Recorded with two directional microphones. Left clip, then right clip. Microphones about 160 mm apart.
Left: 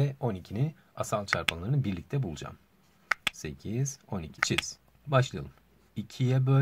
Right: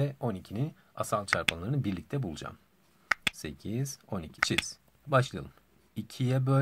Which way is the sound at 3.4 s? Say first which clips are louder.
Left 1 dB; 30° right (ahead or behind).